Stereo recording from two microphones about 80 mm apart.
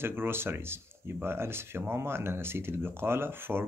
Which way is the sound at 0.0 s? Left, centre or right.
Right.